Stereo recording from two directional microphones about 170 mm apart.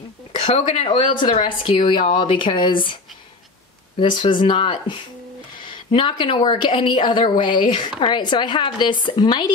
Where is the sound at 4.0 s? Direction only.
30° left (ahead or behind).